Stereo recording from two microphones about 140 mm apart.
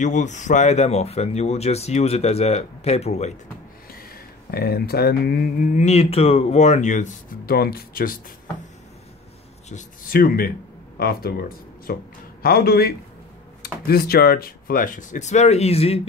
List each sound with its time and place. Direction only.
0.0 s speech: 60° left (ahead or behind)
4.5 s speech: 90° left
9.7 s speech: 75° left (ahead or behind); by 16.0 s 45° left (ahead or behind)